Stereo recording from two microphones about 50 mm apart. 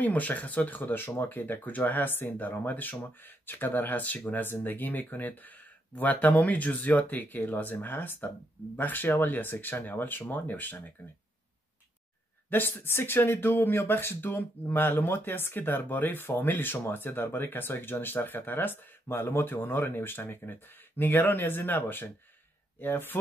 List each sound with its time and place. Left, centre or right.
0.0 s speech: left
12.4 s speech: left